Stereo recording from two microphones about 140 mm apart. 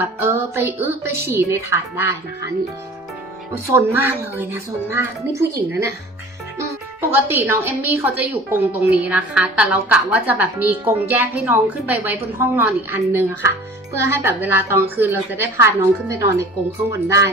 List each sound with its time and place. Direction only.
0.0 s a woman's voice: 15° right (ahead or behind)
3.7 s a woman's voice: 15° right (ahead or behind)
7.0 s a woman's voice: 15° right (ahead or behind)